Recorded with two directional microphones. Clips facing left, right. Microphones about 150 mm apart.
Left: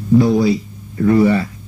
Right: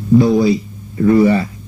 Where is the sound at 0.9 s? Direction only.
20° right (ahead or behind).